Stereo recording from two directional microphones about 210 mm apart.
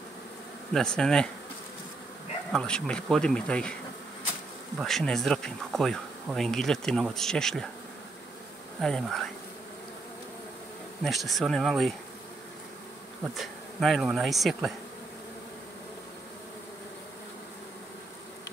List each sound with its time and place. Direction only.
0.7 s speech: 5° left (ahead or behind)
2.5 s speech: 5° left (ahead or behind)
4.7 s speech: centre (ahead or behind)
8.8 s speech: centre (ahead or behind)
11.1 s speech: centre (ahead or behind)
13.3 s speech: centre (ahead or behind)